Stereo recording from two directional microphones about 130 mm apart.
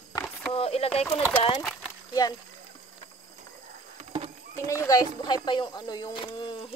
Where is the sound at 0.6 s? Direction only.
50° left (ahead or behind).